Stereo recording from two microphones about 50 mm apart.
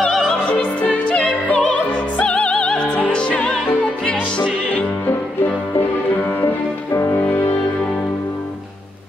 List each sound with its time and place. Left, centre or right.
1.0 s music: left
5.0 s music: left
6.4 s music: left
7.2 s music: left